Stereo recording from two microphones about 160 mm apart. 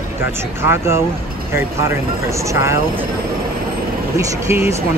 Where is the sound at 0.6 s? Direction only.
15° right (ahead or behind).